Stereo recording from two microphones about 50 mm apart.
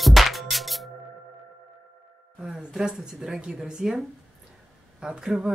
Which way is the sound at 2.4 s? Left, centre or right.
Centre.